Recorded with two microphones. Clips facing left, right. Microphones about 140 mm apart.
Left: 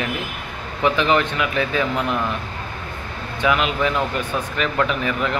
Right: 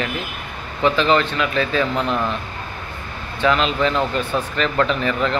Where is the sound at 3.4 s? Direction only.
10° left (ahead or behind).